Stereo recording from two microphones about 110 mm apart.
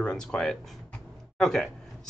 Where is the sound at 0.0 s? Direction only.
10° left (ahead or behind).